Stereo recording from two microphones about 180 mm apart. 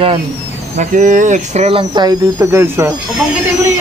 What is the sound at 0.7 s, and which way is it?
Speech, 45° right (ahead or behind).